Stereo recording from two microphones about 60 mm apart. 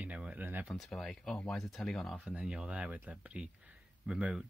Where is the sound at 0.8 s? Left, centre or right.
Centre.